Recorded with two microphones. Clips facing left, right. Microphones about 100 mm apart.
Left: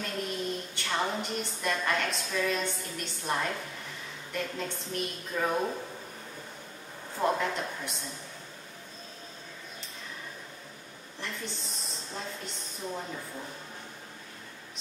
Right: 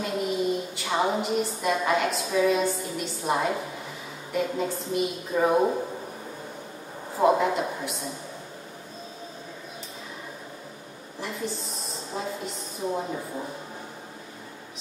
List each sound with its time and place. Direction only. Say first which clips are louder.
0.0 s a woman's voice: right 7 dB; 5° right (ahead or behind)
5.3 s speech: right 8 dB; 15° right (ahead or behind)
7.2 s a woman's voice: right 7 dB; 10° right (ahead or behind)
11.1 s a sound: right 7 dB; 5° right (ahead or behind)
12.9 s a woman's voice: right 7 dB; 15° right (ahead or behind)